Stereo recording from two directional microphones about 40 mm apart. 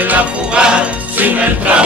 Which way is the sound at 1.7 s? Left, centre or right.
Right.